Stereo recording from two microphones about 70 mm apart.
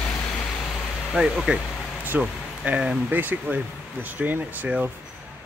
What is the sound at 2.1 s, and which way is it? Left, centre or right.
Speech, right.